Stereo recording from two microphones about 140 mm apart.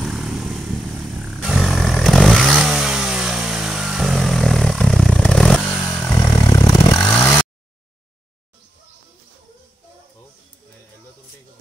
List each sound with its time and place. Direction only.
0.0 s vehicle: centre (ahead or behind)
6.1 s a sound: 25° left (ahead or behind)
7.0 s vehicle: 10° left (ahead or behind)